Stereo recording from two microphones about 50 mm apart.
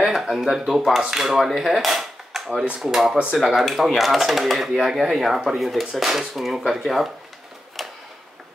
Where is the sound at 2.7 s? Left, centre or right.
Centre.